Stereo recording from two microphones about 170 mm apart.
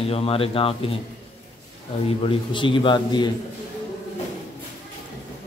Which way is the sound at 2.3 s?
30° left (ahead or behind).